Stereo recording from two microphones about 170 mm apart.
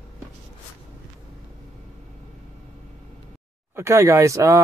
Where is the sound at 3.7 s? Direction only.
15° right (ahead or behind).